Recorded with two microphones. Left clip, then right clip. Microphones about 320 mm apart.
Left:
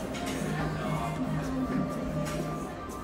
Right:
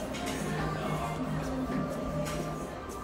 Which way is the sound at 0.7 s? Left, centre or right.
Centre.